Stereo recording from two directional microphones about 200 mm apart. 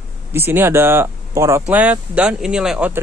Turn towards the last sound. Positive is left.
turn(degrees=-5)  # may be behind; listen again after turning